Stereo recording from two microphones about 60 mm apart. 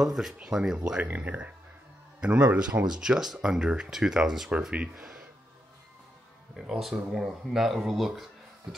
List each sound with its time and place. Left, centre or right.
0.0 s speech: centre
1.0 s speech: right; by 5.2 s centre
6.5 s speech: centre
8.7 s a sound: centre